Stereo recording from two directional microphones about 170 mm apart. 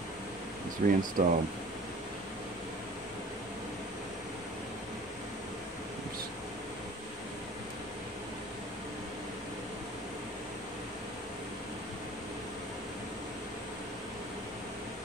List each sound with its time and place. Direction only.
0.8 s speech: 55° right (ahead or behind)